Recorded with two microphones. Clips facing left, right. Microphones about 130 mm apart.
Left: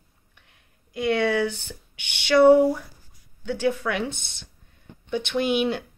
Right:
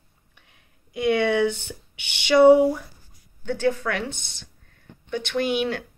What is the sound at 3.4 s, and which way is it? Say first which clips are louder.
Speech: right 1 dB; 10° left (ahead or behind).